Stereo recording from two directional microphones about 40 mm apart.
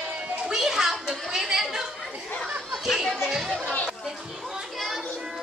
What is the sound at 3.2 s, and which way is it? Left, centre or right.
Chatter, centre.